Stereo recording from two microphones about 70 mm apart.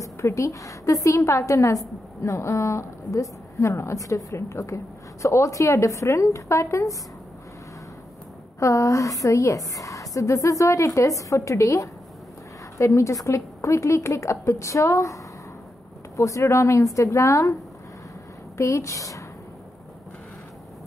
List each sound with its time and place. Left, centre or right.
0.0 s speech: left
8.5 s speech: left
16.2 s speech: left
18.6 s speech: left